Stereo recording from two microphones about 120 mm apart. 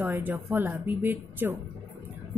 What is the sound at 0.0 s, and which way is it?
A woman's voice, 15° right (ahead or behind).